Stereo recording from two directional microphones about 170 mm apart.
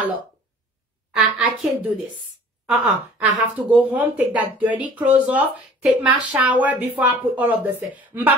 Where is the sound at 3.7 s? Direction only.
10° right (ahead or behind).